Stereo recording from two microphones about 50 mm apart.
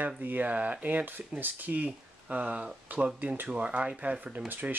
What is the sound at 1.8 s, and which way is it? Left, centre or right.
Speech, right.